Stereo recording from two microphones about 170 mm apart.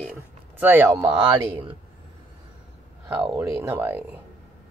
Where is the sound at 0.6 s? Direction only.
10° right (ahead or behind).